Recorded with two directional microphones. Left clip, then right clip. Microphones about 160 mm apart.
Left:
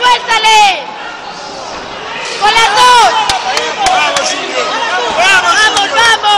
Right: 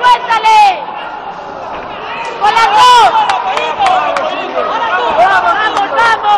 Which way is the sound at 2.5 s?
50° left (ahead or behind).